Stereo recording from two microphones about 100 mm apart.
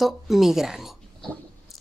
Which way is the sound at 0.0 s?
5° right (ahead or behind).